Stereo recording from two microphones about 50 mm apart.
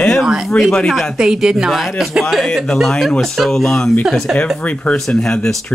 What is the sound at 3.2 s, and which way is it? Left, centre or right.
Speech, centre.